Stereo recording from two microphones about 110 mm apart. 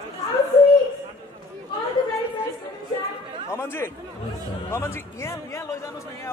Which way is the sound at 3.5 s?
25° left (ahead or behind).